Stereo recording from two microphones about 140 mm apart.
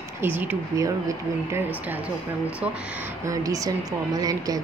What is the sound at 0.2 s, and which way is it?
Speech, 15° right (ahead or behind).